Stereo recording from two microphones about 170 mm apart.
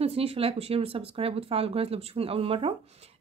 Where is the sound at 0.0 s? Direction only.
35° right (ahead or behind).